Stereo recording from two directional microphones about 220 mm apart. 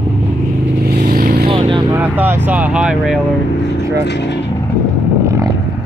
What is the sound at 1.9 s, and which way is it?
Speech, 10° right (ahead or behind).